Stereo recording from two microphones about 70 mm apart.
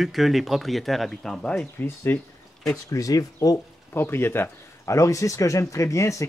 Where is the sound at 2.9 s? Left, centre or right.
Left.